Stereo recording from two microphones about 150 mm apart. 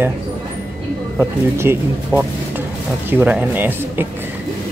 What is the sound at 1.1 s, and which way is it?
Speech, 15° right (ahead or behind).